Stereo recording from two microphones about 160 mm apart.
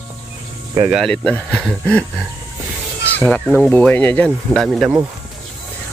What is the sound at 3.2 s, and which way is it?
Speech, centre (ahead or behind).